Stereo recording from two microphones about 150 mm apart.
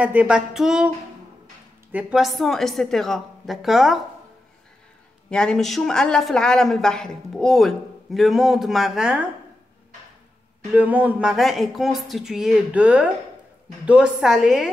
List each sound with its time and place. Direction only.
0.0 s a woman's voice: 10° right (ahead or behind)
5.3 s a woman's voice: 5° left (ahead or behind)
10.7 s a woman's voice: 10° right (ahead or behind)